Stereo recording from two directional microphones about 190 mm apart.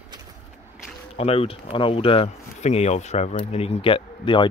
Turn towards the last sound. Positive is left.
turn(degrees=25)  # may be behind; listen again after turning